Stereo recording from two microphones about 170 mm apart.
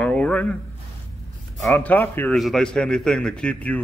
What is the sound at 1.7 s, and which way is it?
A man's voice, 10° left (ahead or behind).